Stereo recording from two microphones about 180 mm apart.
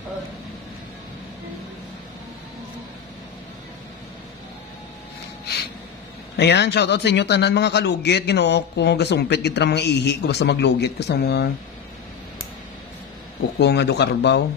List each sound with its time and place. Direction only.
6.3 s a man's voice: 75° left (ahead or behind)
13.6 s a man's voice: 70° left (ahead or behind)